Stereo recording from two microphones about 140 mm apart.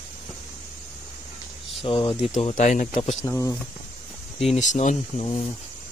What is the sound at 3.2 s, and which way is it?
Speech, 20° left (ahead or behind).